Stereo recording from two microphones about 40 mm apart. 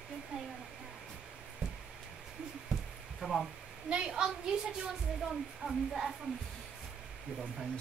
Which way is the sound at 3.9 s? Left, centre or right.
Right.